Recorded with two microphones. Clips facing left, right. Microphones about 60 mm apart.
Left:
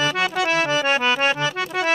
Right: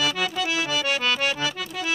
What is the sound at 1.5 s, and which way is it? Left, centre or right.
Accordion, left.